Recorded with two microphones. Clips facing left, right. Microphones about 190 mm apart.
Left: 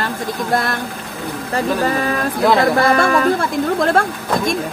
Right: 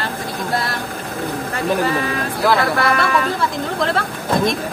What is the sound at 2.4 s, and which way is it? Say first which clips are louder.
Speech: left 3 dB; 25° left (ahead or behind).